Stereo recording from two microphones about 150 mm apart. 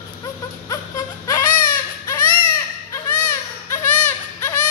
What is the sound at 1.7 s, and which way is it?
Baby cry, 20° left (ahead or behind).